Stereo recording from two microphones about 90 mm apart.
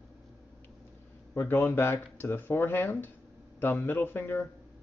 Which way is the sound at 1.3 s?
25° left (ahead or behind).